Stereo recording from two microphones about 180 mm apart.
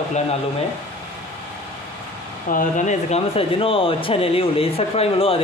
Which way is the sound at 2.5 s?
45° left (ahead or behind).